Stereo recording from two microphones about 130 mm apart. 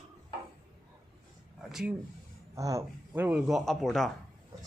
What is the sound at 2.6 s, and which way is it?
Speech, 25° right (ahead or behind).